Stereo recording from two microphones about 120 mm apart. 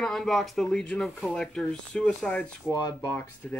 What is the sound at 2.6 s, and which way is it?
Speech, 30° left (ahead or behind).